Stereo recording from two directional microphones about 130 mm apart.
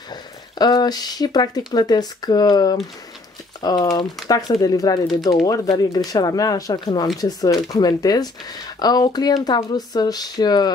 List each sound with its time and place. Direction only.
0.1 s speech: 30° left (ahead or behind)